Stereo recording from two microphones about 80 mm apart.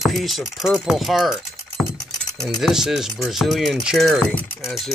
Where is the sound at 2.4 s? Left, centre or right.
Centre.